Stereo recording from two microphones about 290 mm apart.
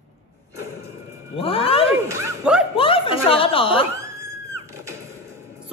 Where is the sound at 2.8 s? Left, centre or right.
Centre.